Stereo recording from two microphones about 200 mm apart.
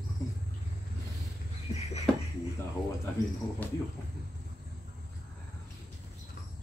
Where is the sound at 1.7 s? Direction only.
35° left (ahead or behind).